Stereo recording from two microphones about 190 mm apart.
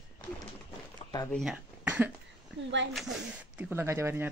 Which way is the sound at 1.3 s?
5° right (ahead or behind).